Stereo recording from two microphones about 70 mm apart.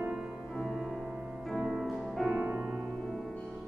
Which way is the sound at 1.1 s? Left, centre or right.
Centre.